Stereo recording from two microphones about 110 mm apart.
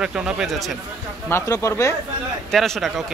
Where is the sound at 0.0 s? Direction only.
5° right (ahead or behind).